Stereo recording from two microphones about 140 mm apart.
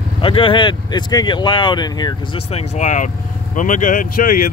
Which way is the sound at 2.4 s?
45° left (ahead or behind).